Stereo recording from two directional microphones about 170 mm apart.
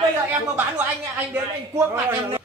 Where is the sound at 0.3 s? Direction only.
10° right (ahead or behind).